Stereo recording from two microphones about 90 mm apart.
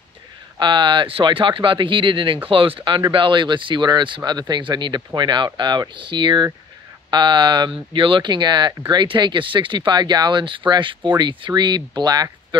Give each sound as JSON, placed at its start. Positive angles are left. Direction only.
{"t": 0.6, "sound": "speech", "side_deg": -60}
{"t": 2.5, "sound": "speech", "side_deg": -80}
{"t": 10.4, "sound": "speech", "side_deg": -65}